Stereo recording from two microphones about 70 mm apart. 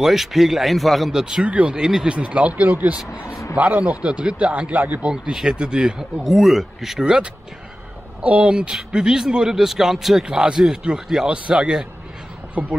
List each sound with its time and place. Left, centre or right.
0.0 s speech: centre
1.2 s speech: centre
5.1 s speech: centre